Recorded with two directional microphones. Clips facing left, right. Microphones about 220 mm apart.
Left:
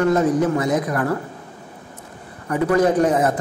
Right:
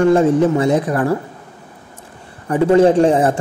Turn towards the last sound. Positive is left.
turn(degrees=-30)  # may be behind; listen again after turning